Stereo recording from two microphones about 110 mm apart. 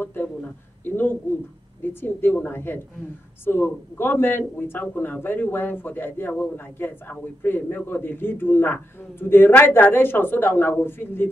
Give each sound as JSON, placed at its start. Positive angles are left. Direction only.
{"t": 0.0, "sound": "a man's voice", "side_deg": 15}